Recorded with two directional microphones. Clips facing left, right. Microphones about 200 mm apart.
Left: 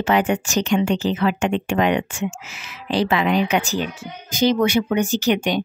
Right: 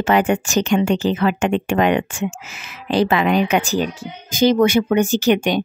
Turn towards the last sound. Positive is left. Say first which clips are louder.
# right 3 dB
turn(degrees=-50)  # may be behind; listen again after turning